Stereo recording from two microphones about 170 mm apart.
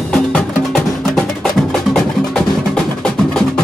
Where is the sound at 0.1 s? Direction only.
5° left (ahead or behind).